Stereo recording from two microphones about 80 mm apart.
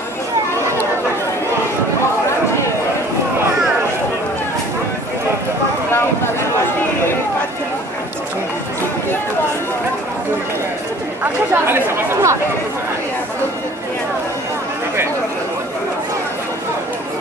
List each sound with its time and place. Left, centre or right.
11.5 s chatter: right